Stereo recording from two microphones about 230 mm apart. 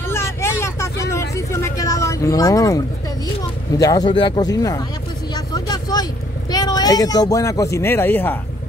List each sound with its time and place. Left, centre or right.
0.1 s vehicle: centre
1.3 s a sound: centre
3.7 s speech: centre
5.3 s vehicle: centre
6.5 s speech: centre